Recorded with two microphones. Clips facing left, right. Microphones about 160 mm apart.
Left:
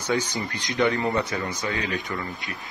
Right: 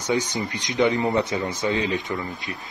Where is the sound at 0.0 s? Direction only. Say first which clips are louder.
Right 2 dB; 20° right (ahead or behind).